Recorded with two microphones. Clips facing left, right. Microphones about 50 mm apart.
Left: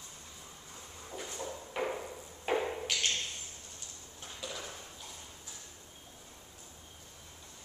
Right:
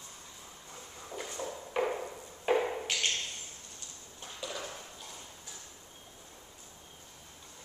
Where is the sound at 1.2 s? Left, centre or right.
Centre.